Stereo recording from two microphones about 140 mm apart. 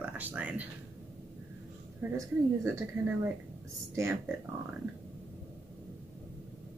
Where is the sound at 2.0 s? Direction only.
10° right (ahead or behind).